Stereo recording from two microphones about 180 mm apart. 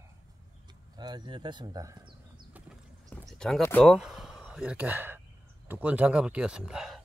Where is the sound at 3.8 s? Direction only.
5° right (ahead or behind).